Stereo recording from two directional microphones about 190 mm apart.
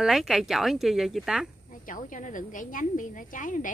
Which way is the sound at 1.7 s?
45° left (ahead or behind).